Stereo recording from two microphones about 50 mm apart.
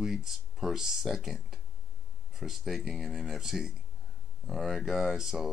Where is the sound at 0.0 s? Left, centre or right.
Centre.